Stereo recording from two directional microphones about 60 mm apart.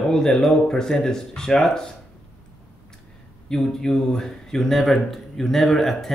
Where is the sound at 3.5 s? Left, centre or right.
Centre.